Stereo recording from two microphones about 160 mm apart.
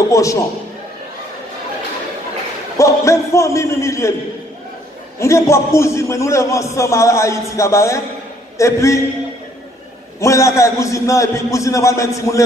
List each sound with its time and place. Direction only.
0.1 s a man's voice: 20° left (ahead or behind)
2.8 s a man's voice: 20° left (ahead or behind)
5.2 s a man's voice: 15° left (ahead or behind)
10.2 s a man's voice: 20° left (ahead or behind)